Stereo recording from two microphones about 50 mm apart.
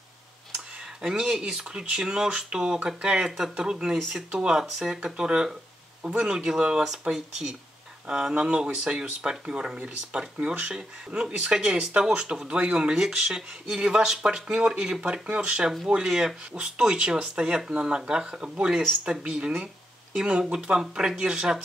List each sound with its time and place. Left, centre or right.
1.0 s speech: centre
3.5 s speech: centre